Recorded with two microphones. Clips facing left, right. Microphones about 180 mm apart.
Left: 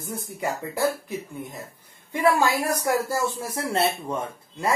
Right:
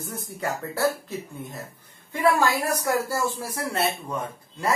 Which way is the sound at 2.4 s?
20° left (ahead or behind).